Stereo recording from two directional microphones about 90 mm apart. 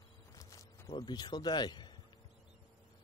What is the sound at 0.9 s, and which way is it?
Speech, 50° left (ahead or behind).